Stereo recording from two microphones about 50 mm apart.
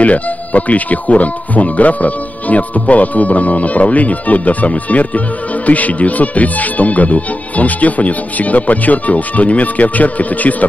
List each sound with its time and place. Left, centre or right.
0.0 s speech: left